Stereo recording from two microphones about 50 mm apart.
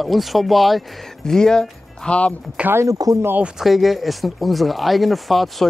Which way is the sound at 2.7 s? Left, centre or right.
Right.